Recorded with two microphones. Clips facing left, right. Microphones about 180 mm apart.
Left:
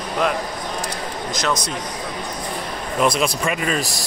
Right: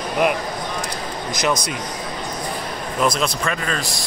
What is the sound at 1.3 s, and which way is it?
Speech, 15° right (ahead or behind).